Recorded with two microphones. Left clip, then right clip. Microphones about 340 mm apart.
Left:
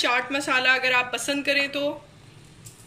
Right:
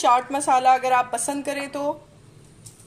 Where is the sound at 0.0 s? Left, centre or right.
Centre.